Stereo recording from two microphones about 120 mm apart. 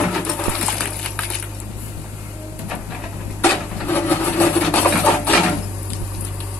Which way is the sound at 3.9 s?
15° left (ahead or behind).